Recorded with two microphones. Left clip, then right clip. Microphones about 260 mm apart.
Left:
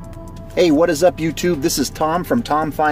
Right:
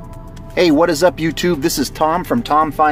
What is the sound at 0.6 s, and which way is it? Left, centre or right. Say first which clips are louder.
Speech: right 1 dB; centre.